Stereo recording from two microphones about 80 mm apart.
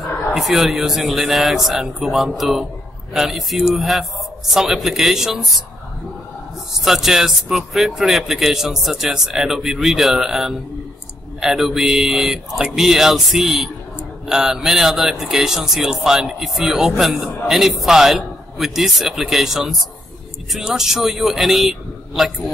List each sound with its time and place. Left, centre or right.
0.3 s speech: centre
6.8 s speech: centre